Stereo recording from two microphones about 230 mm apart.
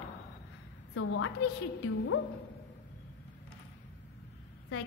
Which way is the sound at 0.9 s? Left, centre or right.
Left.